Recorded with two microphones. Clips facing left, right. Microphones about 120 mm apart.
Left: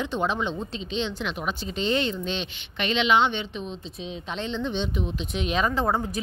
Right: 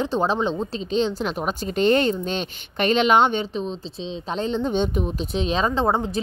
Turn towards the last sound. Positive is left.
turn(degrees=-25)  # may be behind; listen again after turning